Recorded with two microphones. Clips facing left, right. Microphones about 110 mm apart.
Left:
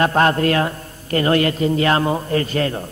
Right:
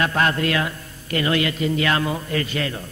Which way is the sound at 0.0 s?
40° left (ahead or behind).